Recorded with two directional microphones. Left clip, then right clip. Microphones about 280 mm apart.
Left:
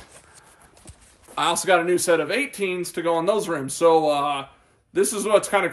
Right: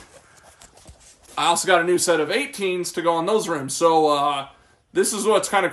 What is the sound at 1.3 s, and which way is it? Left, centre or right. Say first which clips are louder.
A man's voice: right 2 dB; centre.